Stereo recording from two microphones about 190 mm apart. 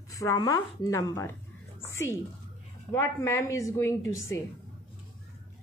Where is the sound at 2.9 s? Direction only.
15° left (ahead or behind).